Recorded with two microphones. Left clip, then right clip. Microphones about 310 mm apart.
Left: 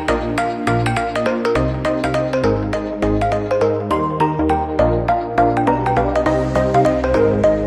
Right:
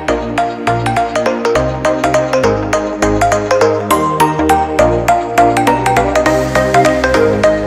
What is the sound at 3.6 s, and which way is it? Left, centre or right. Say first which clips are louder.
Music: right 6 dB; right.